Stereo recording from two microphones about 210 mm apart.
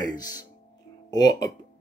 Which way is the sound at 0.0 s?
15° left (ahead or behind).